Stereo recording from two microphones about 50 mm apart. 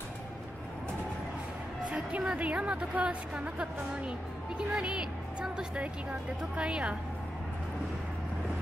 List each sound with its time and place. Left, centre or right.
2.1 s a woman's voice: right